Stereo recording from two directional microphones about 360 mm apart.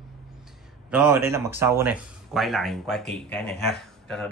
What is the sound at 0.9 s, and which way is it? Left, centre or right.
Speech, centre.